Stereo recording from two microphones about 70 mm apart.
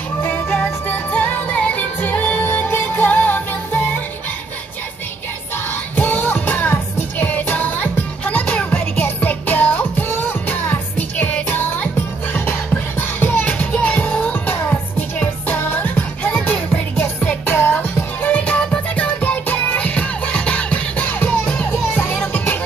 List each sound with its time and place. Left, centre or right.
0.2 s music: left
5.9 s music: left